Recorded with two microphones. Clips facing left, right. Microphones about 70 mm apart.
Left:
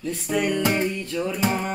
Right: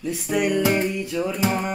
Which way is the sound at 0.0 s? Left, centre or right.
Centre.